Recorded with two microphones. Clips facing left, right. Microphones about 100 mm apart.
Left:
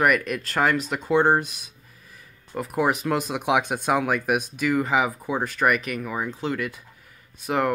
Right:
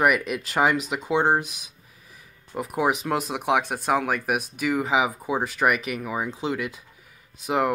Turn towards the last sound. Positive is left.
turn(degrees=-15)  # may be behind; listen again after turning